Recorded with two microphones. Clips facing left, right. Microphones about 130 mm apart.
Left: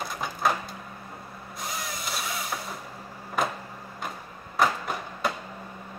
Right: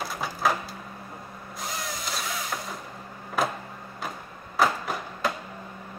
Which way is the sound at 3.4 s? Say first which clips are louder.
Right 1 dB; centre (ahead or behind).